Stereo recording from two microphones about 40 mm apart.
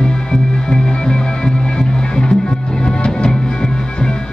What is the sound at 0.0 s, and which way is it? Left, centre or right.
Music, centre.